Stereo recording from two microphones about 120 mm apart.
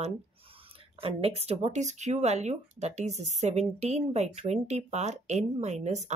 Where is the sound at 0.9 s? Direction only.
55° right (ahead or behind).